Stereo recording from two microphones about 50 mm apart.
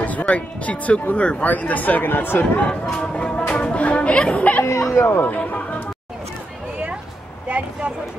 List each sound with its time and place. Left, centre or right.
0.0 s speech: left
2.6 s speech: left
5.4 s a sound: left
7.4 s speech: right